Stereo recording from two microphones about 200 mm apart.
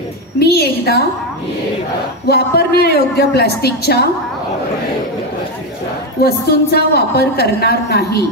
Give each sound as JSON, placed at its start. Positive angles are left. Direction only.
{"t": 0.4, "sound": "a woman's voice", "side_deg": 55}
{"t": 2.2, "sound": "a woman's voice", "side_deg": 50}
{"t": 6.2, "sound": "a woman's voice", "side_deg": 55}